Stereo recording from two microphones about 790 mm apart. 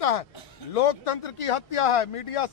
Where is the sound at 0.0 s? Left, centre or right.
Left.